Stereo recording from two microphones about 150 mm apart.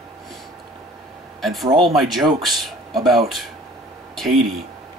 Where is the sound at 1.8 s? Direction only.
Centre (ahead or behind).